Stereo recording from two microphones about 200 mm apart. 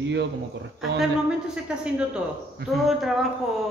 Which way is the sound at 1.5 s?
5° right (ahead or behind).